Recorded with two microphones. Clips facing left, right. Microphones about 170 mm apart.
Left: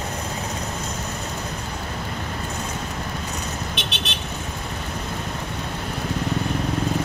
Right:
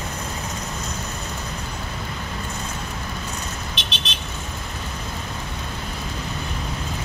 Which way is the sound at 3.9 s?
60° left (ahead or behind).